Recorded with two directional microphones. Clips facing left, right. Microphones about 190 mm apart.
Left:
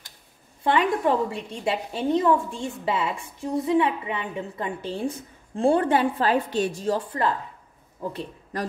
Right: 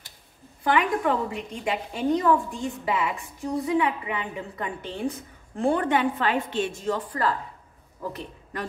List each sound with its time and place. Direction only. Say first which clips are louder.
0.7 s a woman's voice: left 2 dB; 25° left (ahead or behind)